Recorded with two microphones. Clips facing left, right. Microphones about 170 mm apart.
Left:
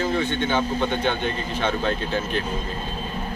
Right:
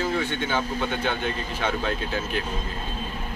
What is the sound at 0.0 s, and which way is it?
Speech, 5° right (ahead or behind).